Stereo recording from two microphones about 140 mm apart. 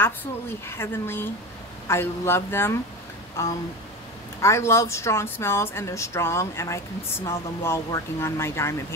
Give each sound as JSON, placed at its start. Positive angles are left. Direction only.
{"t": 0.0, "sound": "a woman's voice", "side_deg": 15}